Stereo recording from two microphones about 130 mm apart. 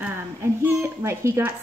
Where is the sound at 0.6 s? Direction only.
20° right (ahead or behind).